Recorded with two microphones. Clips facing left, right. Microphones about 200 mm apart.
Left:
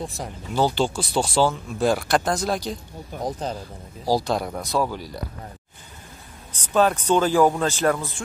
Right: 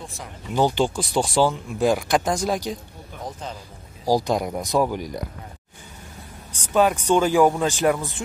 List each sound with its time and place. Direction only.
0.6 s speech: 15° right (ahead or behind)
3.2 s speech: 35° left (ahead or behind)
4.0 s speech: 15° right (ahead or behind)
6.5 s speech: 10° right (ahead or behind)